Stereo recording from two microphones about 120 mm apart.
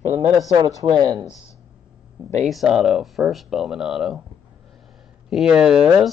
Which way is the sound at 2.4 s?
5° right (ahead or behind).